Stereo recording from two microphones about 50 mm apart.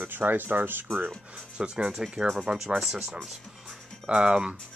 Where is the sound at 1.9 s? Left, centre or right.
Centre.